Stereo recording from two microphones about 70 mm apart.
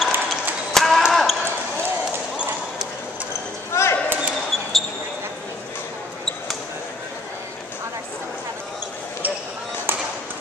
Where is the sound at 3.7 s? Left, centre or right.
Left.